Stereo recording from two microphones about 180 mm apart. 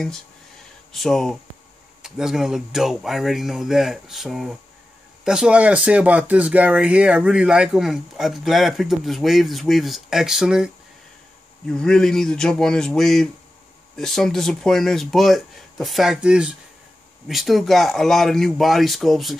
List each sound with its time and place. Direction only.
0.9 s speech: centre (ahead or behind)
11.7 s speech: 5° left (ahead or behind)